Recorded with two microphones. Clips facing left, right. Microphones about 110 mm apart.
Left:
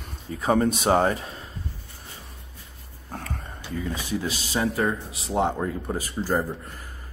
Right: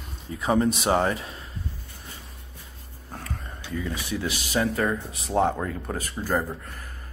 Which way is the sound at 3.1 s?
40° left (ahead or behind).